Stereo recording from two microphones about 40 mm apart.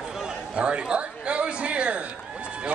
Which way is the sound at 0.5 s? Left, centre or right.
Right.